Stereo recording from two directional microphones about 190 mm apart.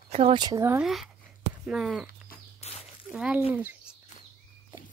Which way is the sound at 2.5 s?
35° left (ahead or behind).